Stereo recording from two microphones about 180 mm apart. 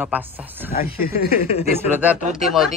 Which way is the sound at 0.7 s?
55° left (ahead or behind).